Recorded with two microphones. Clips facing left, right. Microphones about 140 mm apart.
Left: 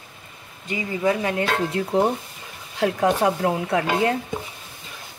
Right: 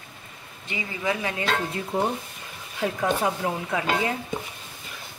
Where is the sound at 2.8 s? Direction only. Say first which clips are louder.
Left 5 dB; 80° left.